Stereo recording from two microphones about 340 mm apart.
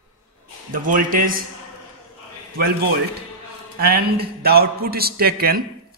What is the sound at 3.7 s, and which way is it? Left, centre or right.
A man's voice, right.